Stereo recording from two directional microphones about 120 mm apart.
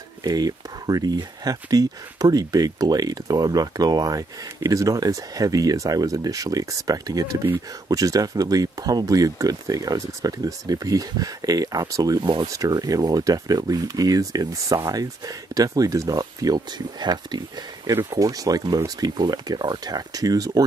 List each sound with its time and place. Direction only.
0.2 s speech: 30° right (ahead or behind)